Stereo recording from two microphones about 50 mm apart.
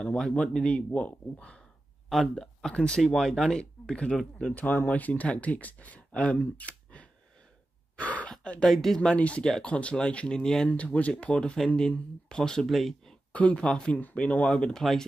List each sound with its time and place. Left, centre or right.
0.0 s speech: centre
2.3 s speech: centre
3.1 s speech: centre
4.6 s speech: left
7.9 s throat clearing: left
8.3 s speech: left
8.6 s speech: centre
9.1 s speech: left
9.4 s speech: centre
9.7 s speech: left
10.7 s speech: left
12.6 s speech: centre
13.3 s speech: left
14.5 s speech: centre